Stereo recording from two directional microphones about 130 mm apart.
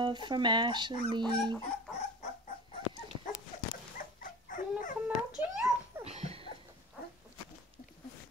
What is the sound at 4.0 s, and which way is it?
Dog, 90° left.